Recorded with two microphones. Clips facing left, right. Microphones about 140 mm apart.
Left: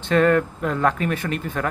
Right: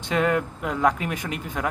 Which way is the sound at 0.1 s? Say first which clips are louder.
Left 5 dB; 10° right (ahead or behind).